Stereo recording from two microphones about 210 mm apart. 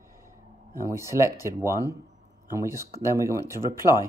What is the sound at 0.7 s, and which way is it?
Speech, 15° right (ahead or behind).